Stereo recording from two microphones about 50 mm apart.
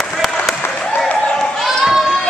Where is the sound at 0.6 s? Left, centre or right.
Left.